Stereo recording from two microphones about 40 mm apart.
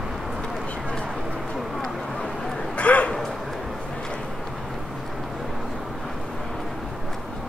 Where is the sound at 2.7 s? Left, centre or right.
Left.